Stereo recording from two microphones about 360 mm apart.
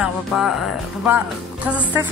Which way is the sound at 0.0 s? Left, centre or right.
Centre.